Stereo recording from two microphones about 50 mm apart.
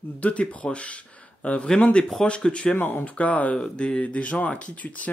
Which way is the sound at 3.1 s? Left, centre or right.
Left.